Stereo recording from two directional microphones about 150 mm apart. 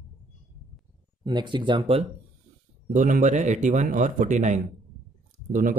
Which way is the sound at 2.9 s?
55° right (ahead or behind).